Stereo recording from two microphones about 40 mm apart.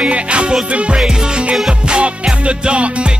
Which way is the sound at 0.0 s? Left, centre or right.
Right.